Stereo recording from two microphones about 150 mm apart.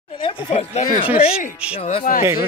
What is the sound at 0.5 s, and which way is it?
Speech, 45° left (ahead or behind).